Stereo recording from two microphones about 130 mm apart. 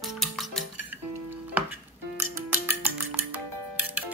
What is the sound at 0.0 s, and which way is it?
Music, centre (ahead or behind).